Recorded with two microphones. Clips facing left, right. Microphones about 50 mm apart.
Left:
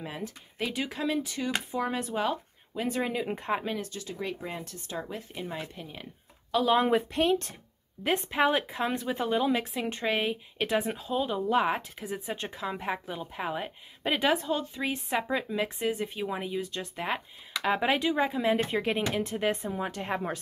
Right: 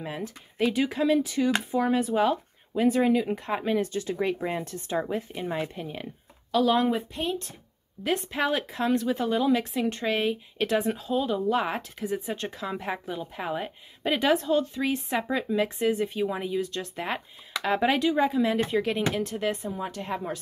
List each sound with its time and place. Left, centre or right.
0.0 s speech: centre
3.1 s speech: centre
3.7 s speech: right
6.5 s speech: centre
6.9 s speech: left
8.0 s speech: left
18.6 s speech: left
19.1 s speech: centre